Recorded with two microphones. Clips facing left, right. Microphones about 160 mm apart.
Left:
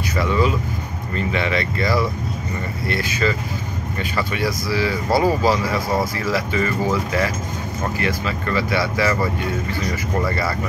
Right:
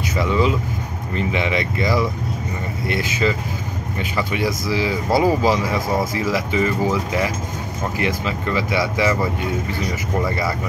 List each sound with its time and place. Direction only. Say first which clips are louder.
0.1 s speech: right 1 dB; 20° right (ahead or behind)